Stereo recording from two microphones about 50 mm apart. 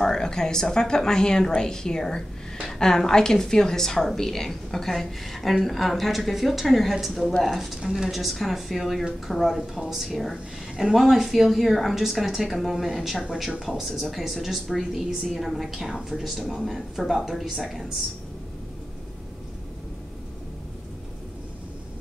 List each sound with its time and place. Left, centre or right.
0.0 s a woman's voice: centre
7.5 s a woman's voice: centre